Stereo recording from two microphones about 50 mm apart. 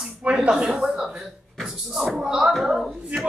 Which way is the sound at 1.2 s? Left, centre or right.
Centre.